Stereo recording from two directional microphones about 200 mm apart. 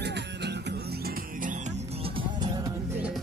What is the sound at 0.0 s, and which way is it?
Music, 60° right (ahead or behind).